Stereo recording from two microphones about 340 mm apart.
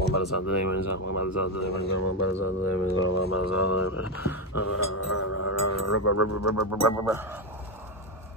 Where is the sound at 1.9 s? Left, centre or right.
Left.